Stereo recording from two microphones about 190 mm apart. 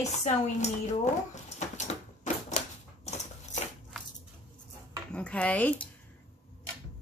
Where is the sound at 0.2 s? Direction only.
35° left (ahead or behind).